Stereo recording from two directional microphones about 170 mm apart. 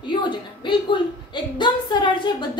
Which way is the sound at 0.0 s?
25° left (ahead or behind).